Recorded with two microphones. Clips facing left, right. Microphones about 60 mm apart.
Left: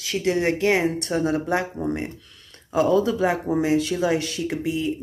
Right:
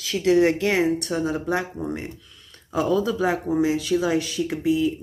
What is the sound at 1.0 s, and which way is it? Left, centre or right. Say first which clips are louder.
Speech: left 2 dB; left.